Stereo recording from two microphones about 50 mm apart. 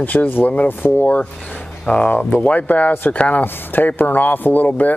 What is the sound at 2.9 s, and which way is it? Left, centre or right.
Speech, left.